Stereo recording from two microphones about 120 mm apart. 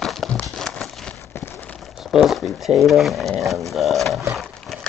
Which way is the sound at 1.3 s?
20° left (ahead or behind).